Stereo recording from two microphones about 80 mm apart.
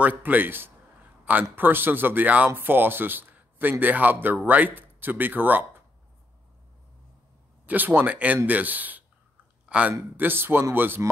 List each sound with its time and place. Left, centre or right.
0.0 s speech: right
7.6 s a man's voice: right
10.1 s speech: right